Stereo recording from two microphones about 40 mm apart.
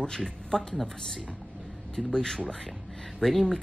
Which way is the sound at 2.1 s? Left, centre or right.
Centre.